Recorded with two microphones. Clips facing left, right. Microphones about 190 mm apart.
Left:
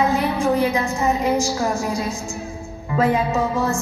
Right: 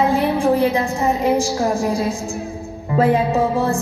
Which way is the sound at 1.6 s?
30° right (ahead or behind).